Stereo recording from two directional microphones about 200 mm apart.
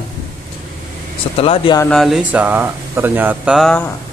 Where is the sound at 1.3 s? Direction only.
30° left (ahead or behind).